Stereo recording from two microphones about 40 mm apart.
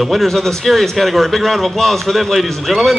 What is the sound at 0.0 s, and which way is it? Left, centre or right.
A man's voice, centre.